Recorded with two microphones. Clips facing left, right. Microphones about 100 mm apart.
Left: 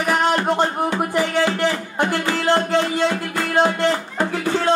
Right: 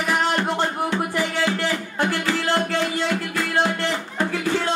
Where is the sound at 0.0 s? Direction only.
15° left (ahead or behind).